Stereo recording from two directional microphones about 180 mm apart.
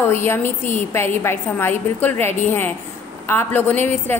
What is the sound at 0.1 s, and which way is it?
A woman's voice, 15° left (ahead or behind).